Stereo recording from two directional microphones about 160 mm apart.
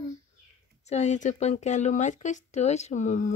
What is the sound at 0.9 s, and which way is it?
Speech, 45° left (ahead or behind).